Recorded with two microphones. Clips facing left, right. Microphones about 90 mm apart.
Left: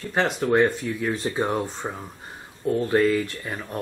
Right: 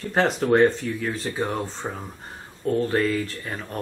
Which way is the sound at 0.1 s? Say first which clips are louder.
Right 2 dB; centre (ahead or behind).